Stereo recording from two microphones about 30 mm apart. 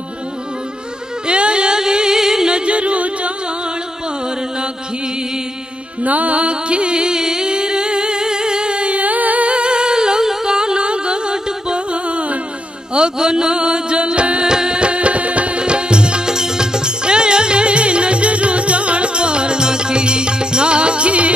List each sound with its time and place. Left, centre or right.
1.2 s music: right; by 2.5 s centre
2.5 s music: right
6.0 s music: right
7.2 s humming: right
9.0 s music: right
9.5 s a sound: right
13.2 s music: right
14.4 s music: right
14.8 s music: right
15.6 s music: right
16.3 s music: right